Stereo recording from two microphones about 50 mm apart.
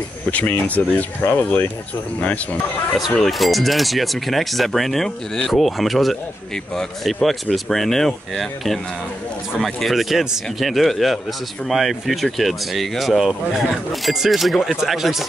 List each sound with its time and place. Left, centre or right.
0.3 s speech: left
3.3 s a man's voice: centre